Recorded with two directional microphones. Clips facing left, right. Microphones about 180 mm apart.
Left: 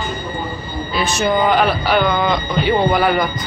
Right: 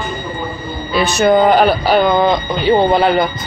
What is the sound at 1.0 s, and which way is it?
Speech, 65° right (ahead or behind).